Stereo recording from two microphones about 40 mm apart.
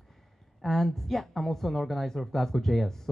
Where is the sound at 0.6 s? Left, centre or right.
Centre.